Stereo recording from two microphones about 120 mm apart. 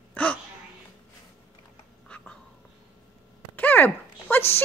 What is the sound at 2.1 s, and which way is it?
Cat, 10° left (ahead or behind).